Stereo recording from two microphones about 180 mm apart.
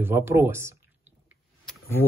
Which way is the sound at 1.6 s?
10° left (ahead or behind).